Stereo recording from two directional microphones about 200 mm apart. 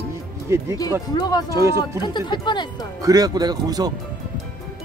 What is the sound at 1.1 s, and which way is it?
Speech, 20° left (ahead or behind).